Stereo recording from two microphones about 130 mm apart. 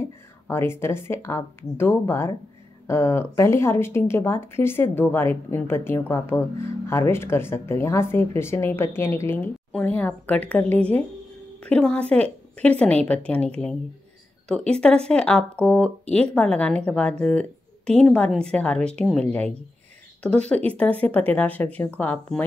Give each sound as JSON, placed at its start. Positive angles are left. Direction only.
{"t": 0.5, "sound": "speech", "side_deg": 20}